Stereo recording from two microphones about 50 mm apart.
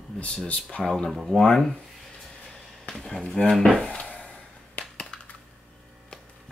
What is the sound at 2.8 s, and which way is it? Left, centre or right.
Speech, centre.